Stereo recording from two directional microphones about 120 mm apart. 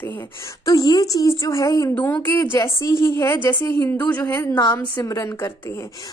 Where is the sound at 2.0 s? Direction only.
15° left (ahead or behind).